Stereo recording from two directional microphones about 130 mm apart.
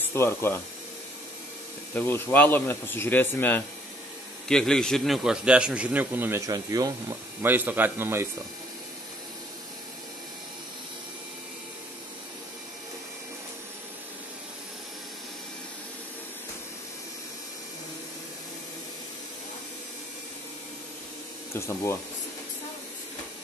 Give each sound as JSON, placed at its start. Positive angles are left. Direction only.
{"t": 0.0, "sound": "speech", "side_deg": 20}
{"t": 2.0, "sound": "a man's voice", "side_deg": 15}
{"t": 4.5, "sound": "a man's voice", "side_deg": 5}
{"t": 6.4, "sound": "speech", "side_deg": -25}
{"t": 7.4, "sound": "a man's voice", "side_deg": -15}
{"t": 21.5, "sound": "speech", "side_deg": 20}